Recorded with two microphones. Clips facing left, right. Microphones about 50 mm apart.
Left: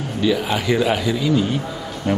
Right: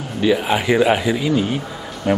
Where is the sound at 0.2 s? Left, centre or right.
Centre.